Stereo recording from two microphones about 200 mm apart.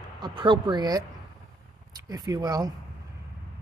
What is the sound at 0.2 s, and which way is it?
Speech, 25° right (ahead or behind).